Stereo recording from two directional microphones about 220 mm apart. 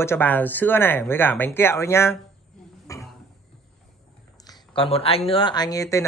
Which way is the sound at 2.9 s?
15° left (ahead or behind).